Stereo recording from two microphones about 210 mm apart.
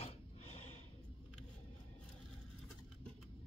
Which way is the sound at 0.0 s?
30° left (ahead or behind).